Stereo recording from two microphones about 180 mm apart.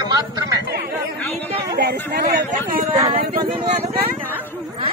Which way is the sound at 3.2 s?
50° right (ahead or behind).